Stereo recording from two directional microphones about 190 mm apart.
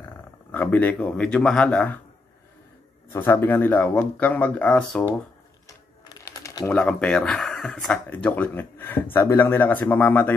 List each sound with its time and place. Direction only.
0.0 s speech: 10° left (ahead or behind)
3.1 s speech: 10° left (ahead or behind)
6.0 s a sound: 15° left (ahead or behind)
6.8 s speech: 5° left (ahead or behind)